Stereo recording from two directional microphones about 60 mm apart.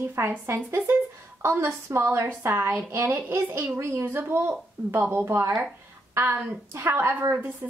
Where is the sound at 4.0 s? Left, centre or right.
Right.